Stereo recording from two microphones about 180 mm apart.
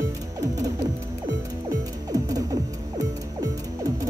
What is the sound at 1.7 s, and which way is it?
Music, 20° right (ahead or behind).